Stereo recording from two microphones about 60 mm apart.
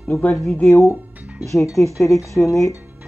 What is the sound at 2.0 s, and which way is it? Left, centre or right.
Speech, left.